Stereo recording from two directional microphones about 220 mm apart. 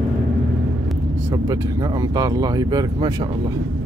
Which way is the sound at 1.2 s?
15° right (ahead or behind).